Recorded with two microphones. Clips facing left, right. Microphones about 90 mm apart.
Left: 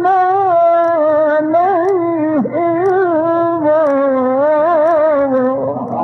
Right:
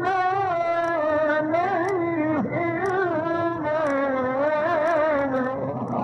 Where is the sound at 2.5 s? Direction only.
50° left (ahead or behind).